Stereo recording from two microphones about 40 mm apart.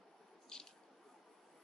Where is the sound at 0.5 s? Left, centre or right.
Centre.